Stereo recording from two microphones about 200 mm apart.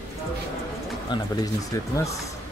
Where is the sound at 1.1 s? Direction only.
20° left (ahead or behind).